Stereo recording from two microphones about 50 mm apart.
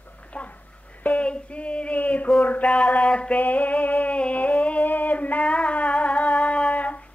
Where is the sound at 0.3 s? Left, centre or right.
Left.